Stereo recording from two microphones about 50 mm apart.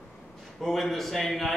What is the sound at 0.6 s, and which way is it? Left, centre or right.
Speech, centre.